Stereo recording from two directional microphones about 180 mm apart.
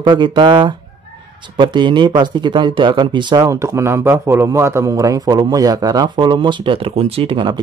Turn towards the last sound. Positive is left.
turn(degrees=-25)  # may be behind; listen again after turning